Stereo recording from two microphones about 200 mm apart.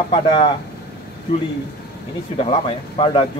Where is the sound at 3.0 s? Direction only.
25° left (ahead or behind).